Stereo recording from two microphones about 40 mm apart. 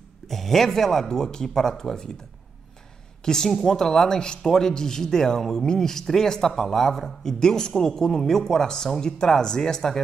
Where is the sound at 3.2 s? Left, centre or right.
Centre.